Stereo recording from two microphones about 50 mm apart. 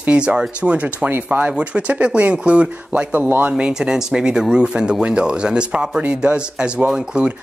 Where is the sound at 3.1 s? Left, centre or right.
Right.